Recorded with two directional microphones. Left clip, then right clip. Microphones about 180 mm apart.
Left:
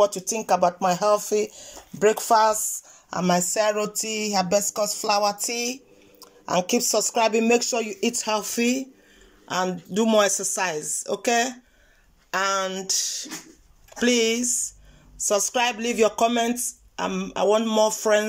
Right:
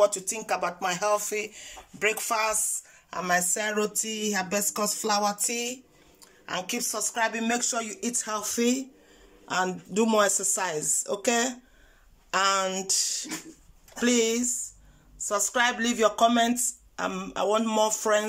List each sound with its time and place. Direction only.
0.0 s speech: 10° left (ahead or behind)